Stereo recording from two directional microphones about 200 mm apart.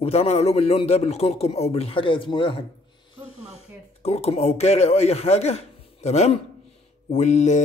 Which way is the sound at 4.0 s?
30° left (ahead or behind).